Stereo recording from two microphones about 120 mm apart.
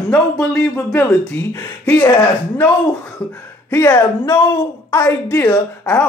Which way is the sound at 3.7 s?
15° left (ahead or behind).